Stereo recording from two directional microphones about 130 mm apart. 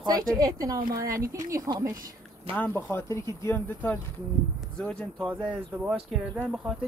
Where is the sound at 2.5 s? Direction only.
15° left (ahead or behind).